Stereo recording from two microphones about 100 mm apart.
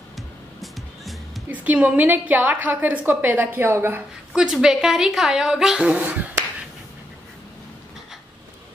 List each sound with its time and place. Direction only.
1.5 s a woman's voice: 15° right (ahead or behind)
4.3 s a woman's voice: 5° right (ahead or behind)